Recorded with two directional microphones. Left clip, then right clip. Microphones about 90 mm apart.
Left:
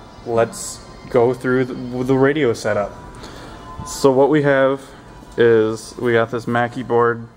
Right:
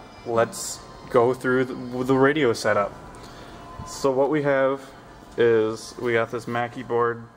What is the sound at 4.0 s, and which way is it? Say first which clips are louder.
Speech: left 8 dB; 25° left (ahead or behind).